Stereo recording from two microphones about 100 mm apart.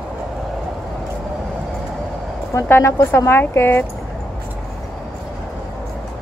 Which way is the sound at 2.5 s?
25° left (ahead or behind).